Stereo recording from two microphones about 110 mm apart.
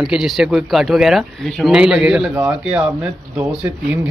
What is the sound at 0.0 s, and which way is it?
A man's voice, 5° right (ahead or behind).